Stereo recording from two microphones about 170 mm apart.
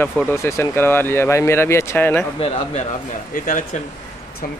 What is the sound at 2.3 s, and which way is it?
Speech, 35° left (ahead or behind).